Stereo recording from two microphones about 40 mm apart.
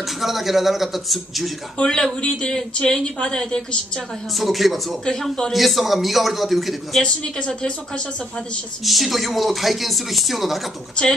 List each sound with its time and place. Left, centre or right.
0.0 s speech: centre
1.8 s a woman's voice: centre
4.3 s speech: centre
5.0 s speech: centre
5.5 s speech: centre
7.0 s a woman's voice: left
8.8 s speech: centre